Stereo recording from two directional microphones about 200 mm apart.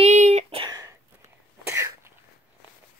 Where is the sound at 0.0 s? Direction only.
35° right (ahead or behind).